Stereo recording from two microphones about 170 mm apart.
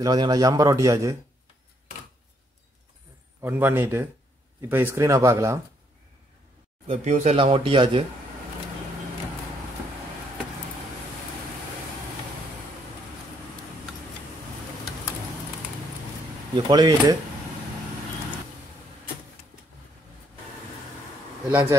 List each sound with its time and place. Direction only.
0.0 s a man's voice: 20° right (ahead or behind)
3.3 s speech: 15° right (ahead or behind)
6.9 s speech: 40° right (ahead or behind)
16.5 s a man's voice: 25° right (ahead or behind)
21.5 s speech: 10° right (ahead or behind)